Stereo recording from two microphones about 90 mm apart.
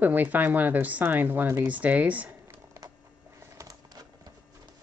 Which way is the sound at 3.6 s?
35° right (ahead or behind).